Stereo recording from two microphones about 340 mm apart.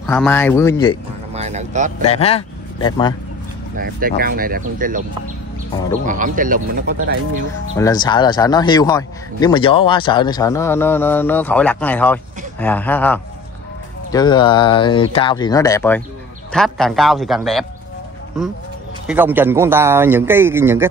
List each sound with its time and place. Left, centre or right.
0.0 s a man's voice: centre
1.3 s a sound: centre
2.0 s speech: centre
3.7 s speech: right
6.0 s speech: right
7.7 s a man's voice: centre
19.0 s speech: centre